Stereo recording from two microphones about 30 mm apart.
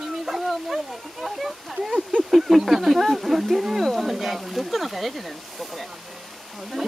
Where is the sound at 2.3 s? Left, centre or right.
Centre.